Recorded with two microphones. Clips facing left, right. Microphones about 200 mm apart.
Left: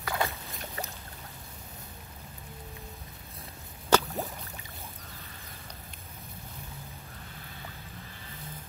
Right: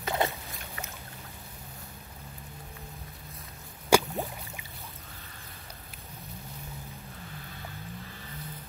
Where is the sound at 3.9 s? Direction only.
10° right (ahead or behind).